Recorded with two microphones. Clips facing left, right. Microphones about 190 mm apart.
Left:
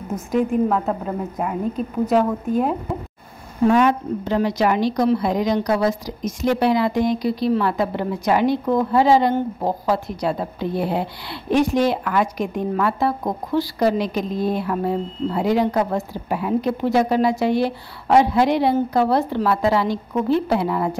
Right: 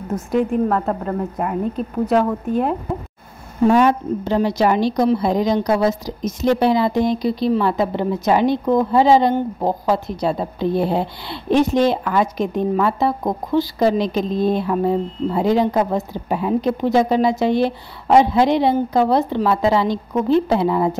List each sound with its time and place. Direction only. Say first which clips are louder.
0.3 s a woman's voice: right 1 dB; 5° left (ahead or behind)
3.6 s a woman's voice: right 2 dB; 30° right (ahead or behind)